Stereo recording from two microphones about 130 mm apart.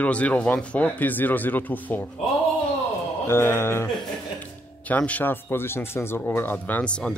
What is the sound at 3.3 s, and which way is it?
Speech, 20° left (ahead or behind).